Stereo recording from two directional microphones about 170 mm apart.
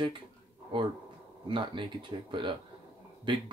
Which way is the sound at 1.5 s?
30° right (ahead or behind).